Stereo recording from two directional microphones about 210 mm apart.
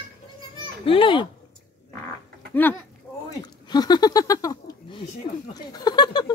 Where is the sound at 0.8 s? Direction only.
25° left (ahead or behind).